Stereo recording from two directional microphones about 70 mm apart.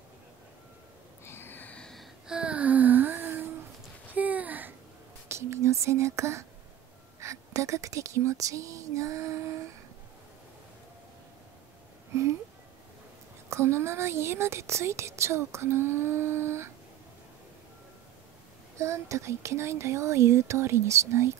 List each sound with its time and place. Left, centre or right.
1.2 s a sound: left
1.8 s gasp: centre
2.2 s a sound: centre
5.3 s whispering: right
7.2 s speech: right
13.5 s a woman's voice: right
18.8 s speech: right